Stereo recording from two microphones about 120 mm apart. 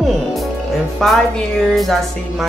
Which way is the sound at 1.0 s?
Centre (ahead or behind).